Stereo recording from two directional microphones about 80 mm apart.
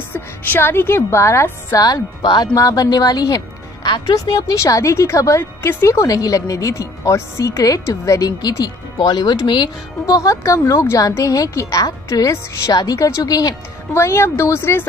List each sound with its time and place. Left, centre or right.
0.1 s a woman's voice: left
2.2 s speech: left
2.5 s speech: left
8.3 s speech: left
10.0 s speech: left
13.9 s speech: left